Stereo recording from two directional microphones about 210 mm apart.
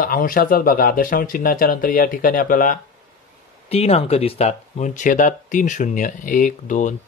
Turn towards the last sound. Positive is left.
turn(degrees=35)  # may be behind; listen again after turning